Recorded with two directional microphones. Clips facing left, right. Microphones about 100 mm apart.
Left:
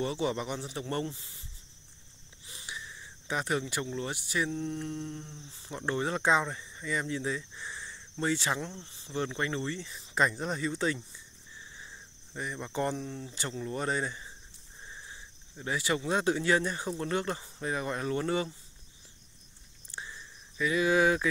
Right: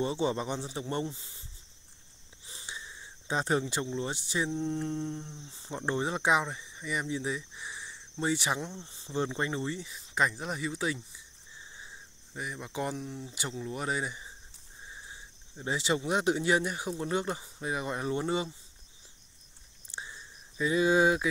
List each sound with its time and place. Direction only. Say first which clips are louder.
0.0 s speech: right 1 dB; 25° right (ahead or behind)
2.4 s speech: left 1 dB; 25° right (ahead or behind)
9.9 s speech: left 2 dB; 5° right (ahead or behind)
12.4 s speech: left 2 dB; 5° right (ahead or behind)
15.0 s speech: even; 20° right (ahead or behind)
19.9 s a sound: even; 20° right (ahead or behind)